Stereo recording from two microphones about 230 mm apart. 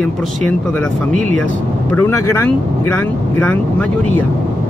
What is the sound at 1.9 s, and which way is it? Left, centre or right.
Speech, centre.